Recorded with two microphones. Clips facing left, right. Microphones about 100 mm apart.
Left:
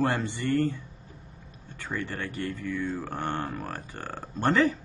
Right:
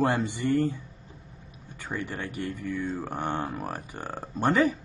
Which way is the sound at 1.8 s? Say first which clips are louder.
Even; 15° right (ahead or behind).